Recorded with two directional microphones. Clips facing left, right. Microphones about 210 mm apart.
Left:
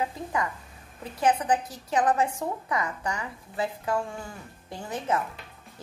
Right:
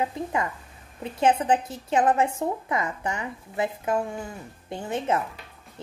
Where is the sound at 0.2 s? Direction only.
25° right (ahead or behind).